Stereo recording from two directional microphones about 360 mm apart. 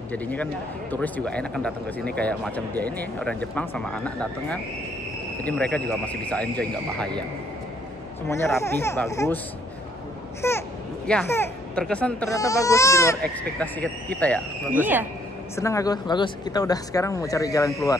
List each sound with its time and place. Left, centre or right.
0.1 s speech: centre
8.3 s speech: centre
10.4 s speech: centre
15.5 s speech: centre